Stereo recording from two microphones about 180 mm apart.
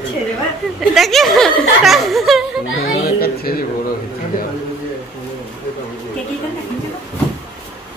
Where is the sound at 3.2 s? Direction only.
55° left (ahead or behind).